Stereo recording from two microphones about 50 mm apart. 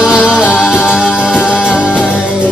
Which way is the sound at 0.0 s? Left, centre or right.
Centre.